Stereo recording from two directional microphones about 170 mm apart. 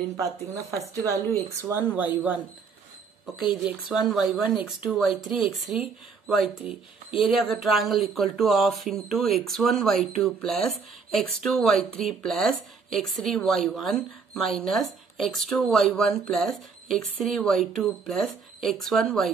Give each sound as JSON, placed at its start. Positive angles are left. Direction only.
{"t": 0.7, "sound": "a woman's voice", "side_deg": -20}